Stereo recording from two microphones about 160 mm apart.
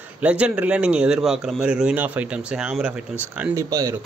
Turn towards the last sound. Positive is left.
turn(degrees=-25)  # may be behind; listen again after turning